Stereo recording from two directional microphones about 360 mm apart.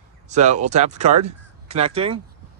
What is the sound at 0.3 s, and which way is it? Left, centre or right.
Speech, centre.